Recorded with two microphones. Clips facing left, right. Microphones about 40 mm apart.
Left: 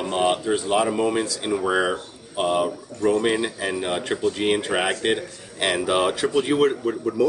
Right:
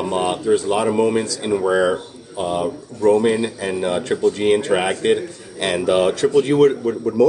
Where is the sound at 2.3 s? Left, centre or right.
Left.